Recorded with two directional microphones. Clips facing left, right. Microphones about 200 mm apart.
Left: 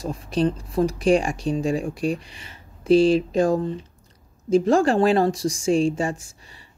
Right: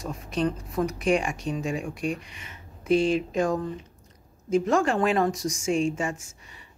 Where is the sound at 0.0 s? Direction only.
30° left (ahead or behind).